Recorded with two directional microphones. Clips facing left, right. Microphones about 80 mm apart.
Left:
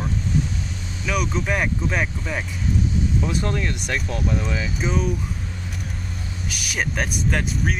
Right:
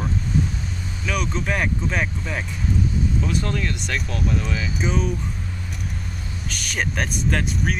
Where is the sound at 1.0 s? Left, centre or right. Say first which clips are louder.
Left 1 dB; centre.